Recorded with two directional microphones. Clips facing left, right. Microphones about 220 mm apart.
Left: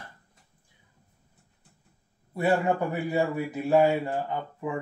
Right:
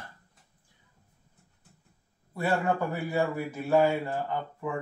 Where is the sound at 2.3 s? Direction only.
20° left (ahead or behind).